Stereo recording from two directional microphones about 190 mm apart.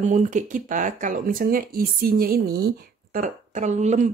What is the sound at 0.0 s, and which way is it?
Speech, 40° right (ahead or behind).